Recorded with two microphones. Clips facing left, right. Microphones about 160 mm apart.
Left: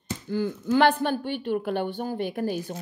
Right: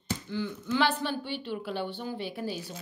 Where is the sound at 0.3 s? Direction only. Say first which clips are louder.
Left 8 dB; 45° left (ahead or behind).